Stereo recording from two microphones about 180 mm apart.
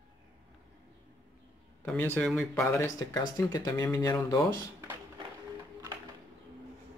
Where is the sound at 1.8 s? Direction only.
10° left (ahead or behind).